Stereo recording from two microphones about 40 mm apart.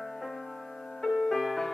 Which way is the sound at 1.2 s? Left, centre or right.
Centre.